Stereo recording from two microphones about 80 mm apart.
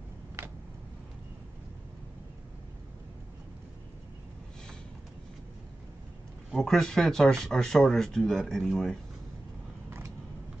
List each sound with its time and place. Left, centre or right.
6.5 s speech: centre
9.8 s vehicle: right